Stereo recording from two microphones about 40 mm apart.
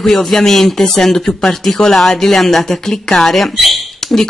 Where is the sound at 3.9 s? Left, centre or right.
Centre.